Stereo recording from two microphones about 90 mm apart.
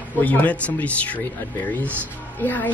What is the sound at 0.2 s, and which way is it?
Speech, 20° left (ahead or behind).